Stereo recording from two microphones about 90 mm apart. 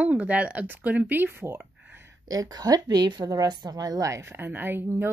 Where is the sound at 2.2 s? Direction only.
45° right (ahead or behind).